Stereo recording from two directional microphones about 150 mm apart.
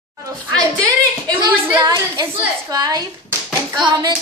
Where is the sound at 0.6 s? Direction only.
25° right (ahead or behind).